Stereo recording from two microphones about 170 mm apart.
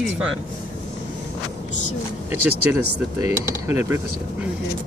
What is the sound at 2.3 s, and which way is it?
Speech, 15° right (ahead or behind).